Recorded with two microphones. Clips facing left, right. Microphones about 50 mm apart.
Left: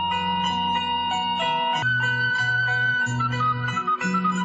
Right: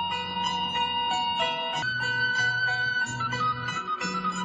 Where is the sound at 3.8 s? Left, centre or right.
Left.